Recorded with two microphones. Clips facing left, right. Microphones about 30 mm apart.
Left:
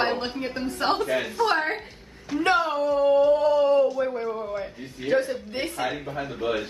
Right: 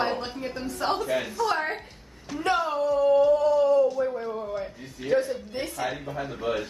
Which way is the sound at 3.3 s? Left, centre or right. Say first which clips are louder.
Left 1 dB; left.